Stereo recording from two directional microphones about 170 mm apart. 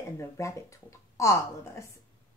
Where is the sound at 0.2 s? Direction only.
20° left (ahead or behind).